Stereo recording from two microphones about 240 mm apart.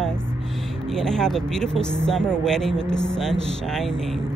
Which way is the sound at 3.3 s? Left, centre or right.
Right.